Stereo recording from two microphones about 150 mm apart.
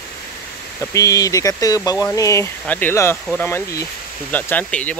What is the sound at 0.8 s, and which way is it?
Speech, 20° left (ahead or behind).